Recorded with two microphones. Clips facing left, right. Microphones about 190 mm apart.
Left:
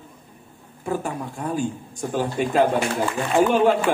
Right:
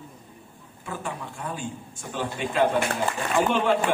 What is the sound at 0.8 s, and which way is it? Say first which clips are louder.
Speech: left 7 dB; 40° left (ahead or behind).